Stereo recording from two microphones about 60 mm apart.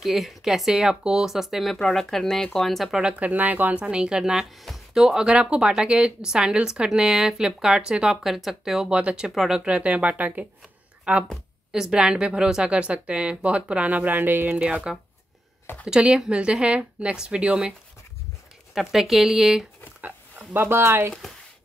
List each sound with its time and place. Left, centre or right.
0.0 s speech: centre
3.0 s speech: centre
14.9 s speech: centre
18.8 s speech: centre
20.0 s speech: right